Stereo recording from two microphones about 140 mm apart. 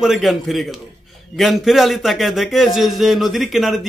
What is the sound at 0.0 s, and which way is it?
A man's voice, centre (ahead or behind).